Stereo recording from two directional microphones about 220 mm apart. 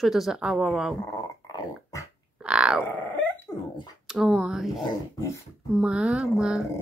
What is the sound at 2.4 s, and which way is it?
Grunt, 5° right (ahead or behind).